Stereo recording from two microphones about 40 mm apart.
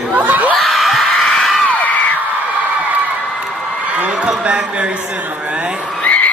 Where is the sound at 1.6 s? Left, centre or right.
Left.